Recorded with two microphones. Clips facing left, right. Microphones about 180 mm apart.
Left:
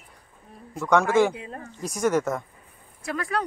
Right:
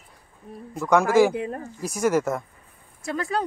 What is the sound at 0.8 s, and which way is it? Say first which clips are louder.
Speech: right 2 dB; 5° right (ahead or behind).